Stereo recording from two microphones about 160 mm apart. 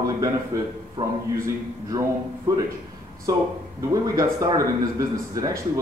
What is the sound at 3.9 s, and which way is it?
Speech, 20° right (ahead or behind).